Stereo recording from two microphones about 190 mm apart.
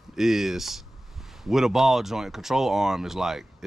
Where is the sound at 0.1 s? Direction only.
Centre (ahead or behind).